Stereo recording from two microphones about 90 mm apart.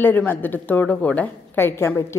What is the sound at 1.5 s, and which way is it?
Speech, 25° left (ahead or behind).